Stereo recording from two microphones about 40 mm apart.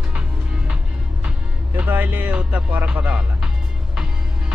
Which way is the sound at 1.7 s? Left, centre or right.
Right.